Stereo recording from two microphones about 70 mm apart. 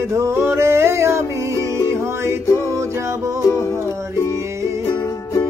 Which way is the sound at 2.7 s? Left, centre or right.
Right.